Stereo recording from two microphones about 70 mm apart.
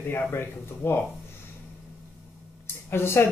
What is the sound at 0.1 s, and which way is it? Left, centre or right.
Speech, left.